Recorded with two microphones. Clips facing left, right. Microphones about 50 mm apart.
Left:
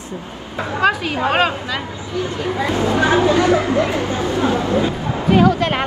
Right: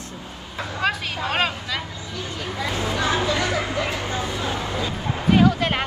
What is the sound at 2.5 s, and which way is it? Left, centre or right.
Speech, left.